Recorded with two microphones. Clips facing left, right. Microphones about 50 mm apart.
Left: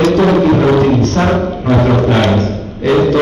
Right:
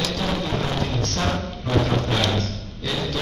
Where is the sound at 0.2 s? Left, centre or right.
Left.